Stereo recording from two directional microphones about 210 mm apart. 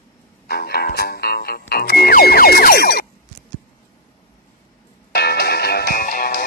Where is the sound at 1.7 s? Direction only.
50° left (ahead or behind).